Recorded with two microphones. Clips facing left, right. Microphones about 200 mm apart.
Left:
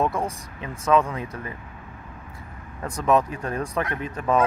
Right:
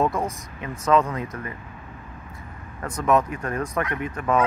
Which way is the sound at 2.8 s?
15° left (ahead or behind).